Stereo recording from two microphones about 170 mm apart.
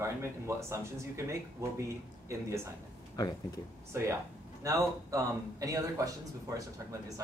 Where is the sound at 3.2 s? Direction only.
20° left (ahead or behind).